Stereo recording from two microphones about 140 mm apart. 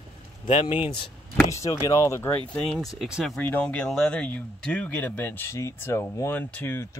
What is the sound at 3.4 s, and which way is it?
Speech, 10° left (ahead or behind).